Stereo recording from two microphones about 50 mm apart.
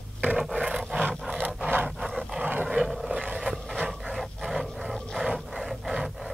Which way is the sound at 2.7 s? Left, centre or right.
Centre.